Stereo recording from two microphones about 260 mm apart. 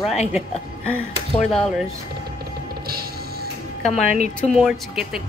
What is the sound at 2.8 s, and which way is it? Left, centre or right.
Music, right.